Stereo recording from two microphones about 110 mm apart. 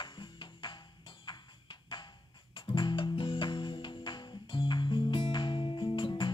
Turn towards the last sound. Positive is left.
turn(degrees=45)  # may be behind; listen again after turning